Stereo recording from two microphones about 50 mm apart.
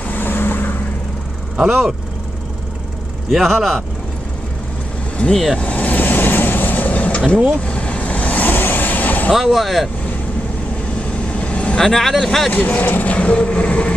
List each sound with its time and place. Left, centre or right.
0.0 s vehicle: left
1.6 s speech: centre
3.3 s speech: centre
5.3 s speech: centre
5.6 s vehicle: left
9.3 s speech: centre
11.0 s vehicle: left
11.8 s speech: centre
12.4 s speech: left